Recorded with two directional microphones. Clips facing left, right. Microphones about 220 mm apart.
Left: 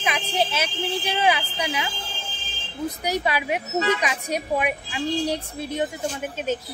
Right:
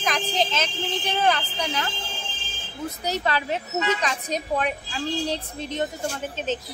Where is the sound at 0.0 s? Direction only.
10° left (ahead or behind).